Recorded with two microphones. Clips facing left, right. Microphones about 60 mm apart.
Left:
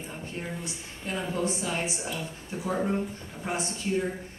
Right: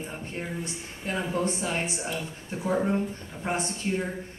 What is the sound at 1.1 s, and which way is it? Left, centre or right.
Speech, right.